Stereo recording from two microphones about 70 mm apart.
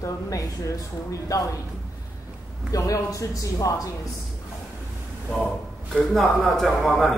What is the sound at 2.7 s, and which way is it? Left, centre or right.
Speech, left.